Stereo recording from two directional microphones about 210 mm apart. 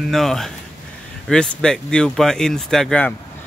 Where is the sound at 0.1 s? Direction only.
Centre (ahead or behind).